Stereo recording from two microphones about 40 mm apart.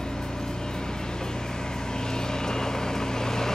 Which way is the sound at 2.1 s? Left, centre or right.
Centre.